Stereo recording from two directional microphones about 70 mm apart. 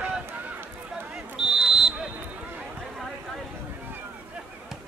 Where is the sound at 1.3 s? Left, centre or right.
Centre.